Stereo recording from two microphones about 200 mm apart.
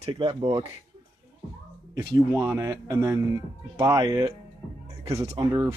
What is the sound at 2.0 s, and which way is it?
Speech, 15° right (ahead or behind).